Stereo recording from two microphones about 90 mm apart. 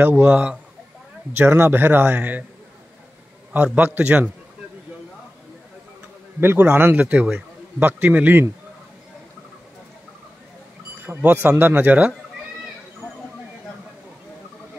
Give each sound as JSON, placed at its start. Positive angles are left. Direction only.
{"t": 0.0, "sound": "a man's voice", "side_deg": -20}
{"t": 3.5, "sound": "a man's voice", "side_deg": -20}
{"t": 6.4, "sound": "a man's voice", "side_deg": -25}
{"t": 11.1, "sound": "a man's voice", "side_deg": -20}